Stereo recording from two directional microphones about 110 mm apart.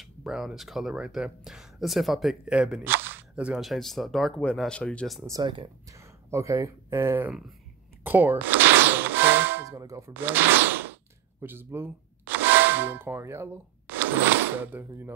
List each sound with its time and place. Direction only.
0.0 s speech: centre (ahead or behind)
2.8 s speech: 20° right (ahead or behind)
3.6 s speech: centre (ahead or behind)
5.4 s speech: 45° right (ahead or behind)
5.9 s speech: 25° right (ahead or behind)
8.0 s a sound: 20° right (ahead or behind)
9.7 s speech: 30° right (ahead or behind)